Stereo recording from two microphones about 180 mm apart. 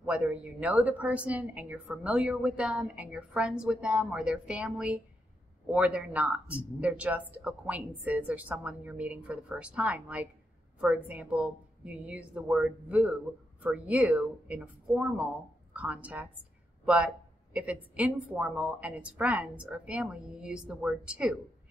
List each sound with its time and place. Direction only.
0.0 s a woman's voice: 5° right (ahead or behind)